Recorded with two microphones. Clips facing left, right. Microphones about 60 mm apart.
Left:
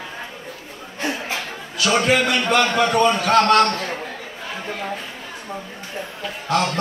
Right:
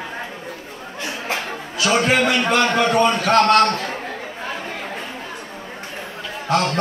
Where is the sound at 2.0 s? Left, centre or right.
Right; by 3.5 s centre.